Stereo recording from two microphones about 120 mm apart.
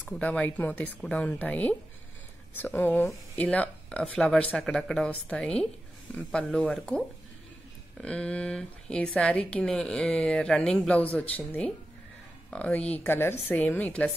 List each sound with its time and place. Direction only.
0.0 s speech: 10° left (ahead or behind)